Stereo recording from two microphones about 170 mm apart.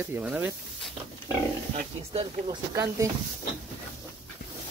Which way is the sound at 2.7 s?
20° right (ahead or behind).